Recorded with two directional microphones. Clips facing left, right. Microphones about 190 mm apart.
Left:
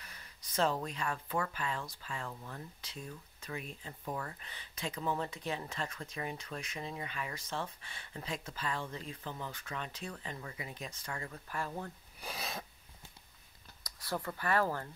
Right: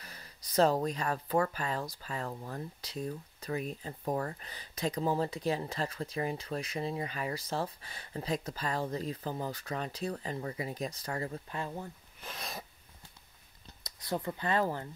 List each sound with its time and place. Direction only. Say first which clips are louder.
0.0 s speech: right 4 dB; 35° right (ahead or behind)
12.2 s sneeze: left 2 dB; 10° left (ahead or behind)
13.8 s speech: right 4 dB; 20° right (ahead or behind)